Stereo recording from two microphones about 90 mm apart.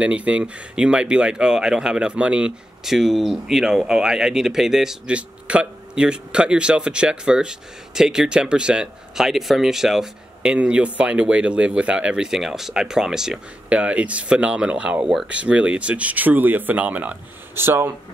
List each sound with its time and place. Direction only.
0.0 s speech: 15° right (ahead or behind)